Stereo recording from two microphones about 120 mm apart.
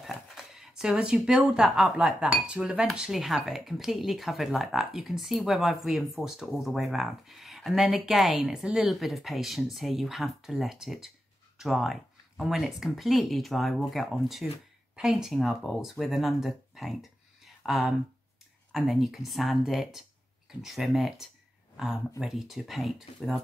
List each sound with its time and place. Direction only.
0.0 s speech: centre (ahead or behind)